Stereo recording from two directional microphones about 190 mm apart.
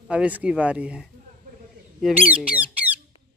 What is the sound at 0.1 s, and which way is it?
Speech, 5° right (ahead or behind).